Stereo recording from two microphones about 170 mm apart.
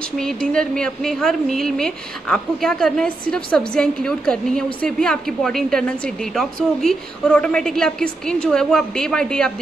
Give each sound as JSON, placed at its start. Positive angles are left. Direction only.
{"t": 0.5, "sound": "a woman's voice", "side_deg": 5}